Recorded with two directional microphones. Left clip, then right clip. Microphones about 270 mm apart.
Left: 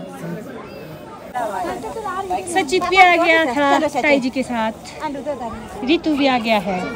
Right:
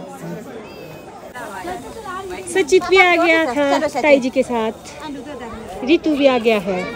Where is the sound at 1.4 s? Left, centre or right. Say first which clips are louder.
Left 8 dB; left.